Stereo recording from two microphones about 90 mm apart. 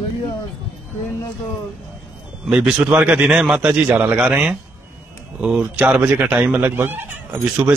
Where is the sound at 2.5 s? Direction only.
10° right (ahead or behind).